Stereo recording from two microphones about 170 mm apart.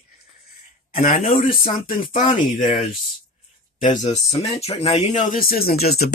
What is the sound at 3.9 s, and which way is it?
Speech, 40° left (ahead or behind).